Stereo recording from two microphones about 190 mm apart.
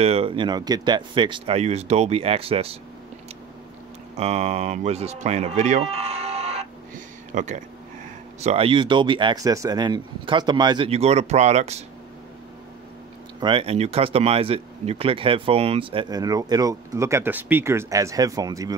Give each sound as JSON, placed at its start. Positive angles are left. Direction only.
{"t": 0.0, "sound": "speech", "side_deg": -30}
{"t": 4.2, "sound": "speech", "side_deg": -35}
{"t": 13.4, "sound": "speech", "side_deg": -25}